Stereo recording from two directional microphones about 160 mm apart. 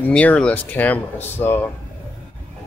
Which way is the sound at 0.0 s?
10° left (ahead or behind).